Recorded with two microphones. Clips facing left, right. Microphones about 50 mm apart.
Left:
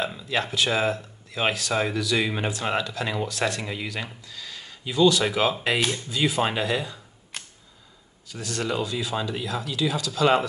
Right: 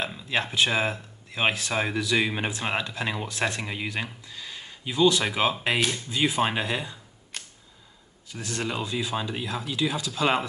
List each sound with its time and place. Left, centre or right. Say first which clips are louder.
0.3 s speech: even; right
7.3 s camera: left 1 dB; centre
8.3 s speech: left 2 dB; right
8.6 s speech: left 3 dB; centre